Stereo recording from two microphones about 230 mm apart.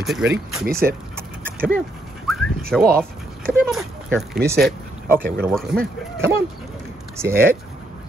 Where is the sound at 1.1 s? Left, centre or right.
Centre.